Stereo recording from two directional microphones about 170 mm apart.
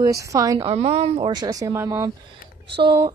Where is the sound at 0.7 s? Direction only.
35° right (ahead or behind).